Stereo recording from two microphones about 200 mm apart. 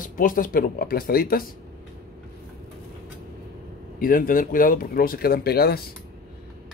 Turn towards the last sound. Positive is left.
turn(degrees=50)  # may be behind; listen again after turning